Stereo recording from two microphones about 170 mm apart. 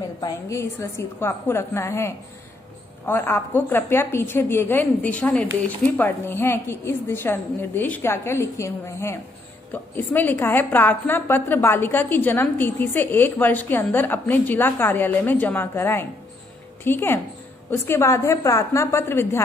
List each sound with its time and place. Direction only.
0.2 s a woman's voice: 15° left (ahead or behind)